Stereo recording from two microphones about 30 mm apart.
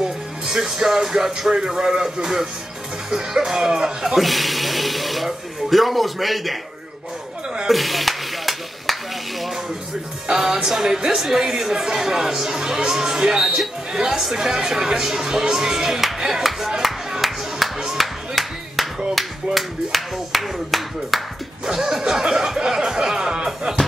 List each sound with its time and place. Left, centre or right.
0.5 s speech: centre
4.2 s speech: centre
7.6 s a sound: centre
10.3 s speech: centre
17.2 s music: centre
19.1 s speech: centre
21.6 s speech: centre